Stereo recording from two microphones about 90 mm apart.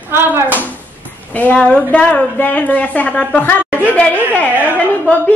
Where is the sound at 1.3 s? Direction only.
15° left (ahead or behind).